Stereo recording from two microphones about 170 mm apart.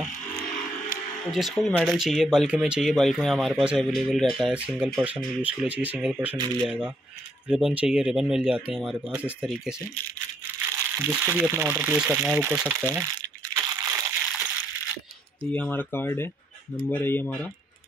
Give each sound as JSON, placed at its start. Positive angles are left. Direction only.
{"t": 1.3, "sound": "speech", "side_deg": 0}
{"t": 2.0, "sound": "speech", "side_deg": 0}
{"t": 11.1, "sound": "speech", "side_deg": -10}
{"t": 12.9, "sound": "crumpling", "side_deg": -20}
{"t": 15.5, "sound": "speech", "side_deg": 10}